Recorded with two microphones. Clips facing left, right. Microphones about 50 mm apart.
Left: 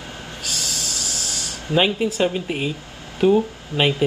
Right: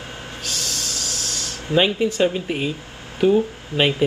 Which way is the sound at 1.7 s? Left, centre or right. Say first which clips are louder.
Right 1 dB; centre.